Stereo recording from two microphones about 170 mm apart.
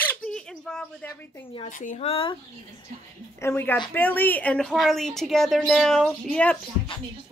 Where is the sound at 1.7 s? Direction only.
50° left (ahead or behind); by 2.4 s 30° left (ahead or behind).